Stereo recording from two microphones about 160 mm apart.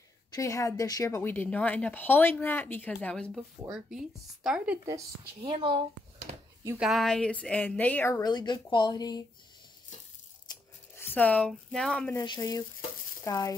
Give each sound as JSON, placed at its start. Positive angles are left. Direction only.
{"t": 0.3, "sound": "a woman's voice", "side_deg": 20}
{"t": 5.4, "sound": "speech", "side_deg": -35}
{"t": 6.3, "sound": "a sound", "side_deg": -45}
{"t": 6.8, "sound": "a woman's voice", "side_deg": 0}
{"t": 11.0, "sound": "speech", "side_deg": 10}
{"t": 12.2, "sound": "speech", "side_deg": 20}